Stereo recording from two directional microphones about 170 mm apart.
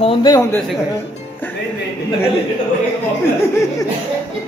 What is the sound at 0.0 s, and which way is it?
Speech, 25° left (ahead or behind).